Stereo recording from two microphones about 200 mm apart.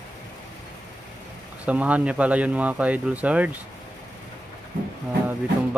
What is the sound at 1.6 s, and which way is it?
Speech, 5° right (ahead or behind).